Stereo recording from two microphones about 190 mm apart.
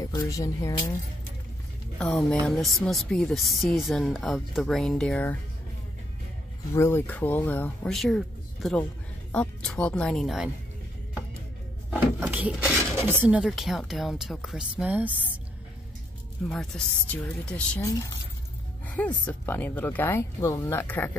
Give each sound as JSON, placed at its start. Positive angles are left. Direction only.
{"t": 0.0, "sound": "speech", "side_deg": 20}
{"t": 2.0, "sound": "speech", "side_deg": 5}
{"t": 6.7, "sound": "speech", "side_deg": 15}
{"t": 9.3, "sound": "speech", "side_deg": 5}
{"t": 11.9, "sound": "a sound", "side_deg": -10}
{"t": 13.0, "sound": "speech", "side_deg": -10}
{"t": 16.4, "sound": "speech", "side_deg": 5}